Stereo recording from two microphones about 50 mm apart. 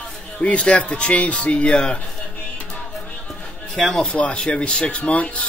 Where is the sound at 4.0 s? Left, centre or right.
Left.